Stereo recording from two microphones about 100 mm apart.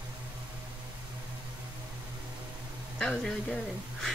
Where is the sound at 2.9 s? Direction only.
5° left (ahead or behind).